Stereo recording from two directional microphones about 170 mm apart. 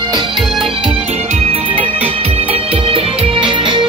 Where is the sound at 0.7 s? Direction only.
30° right (ahead or behind).